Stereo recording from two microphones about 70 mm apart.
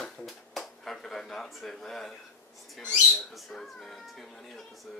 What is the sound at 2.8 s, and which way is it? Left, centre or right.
Speech, left.